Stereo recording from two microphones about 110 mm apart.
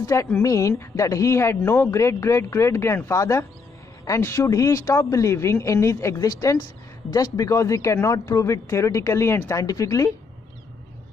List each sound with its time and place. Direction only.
0.0 s speech: 30° left (ahead or behind)